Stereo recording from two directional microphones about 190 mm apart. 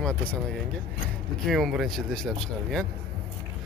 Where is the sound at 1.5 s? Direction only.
Centre (ahead or behind).